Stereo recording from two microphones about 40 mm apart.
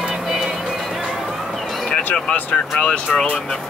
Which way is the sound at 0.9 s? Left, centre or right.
Centre.